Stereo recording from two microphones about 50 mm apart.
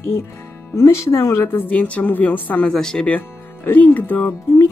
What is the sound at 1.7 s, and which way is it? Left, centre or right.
Speech, left.